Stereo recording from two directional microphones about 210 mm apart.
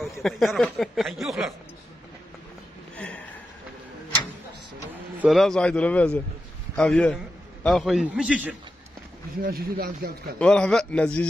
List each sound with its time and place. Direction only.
0.2 s speech: centre (ahead or behind)
5.2 s speech: centre (ahead or behind)
9.4 s speech: 45° right (ahead or behind)
10.4 s speech: 5° left (ahead or behind)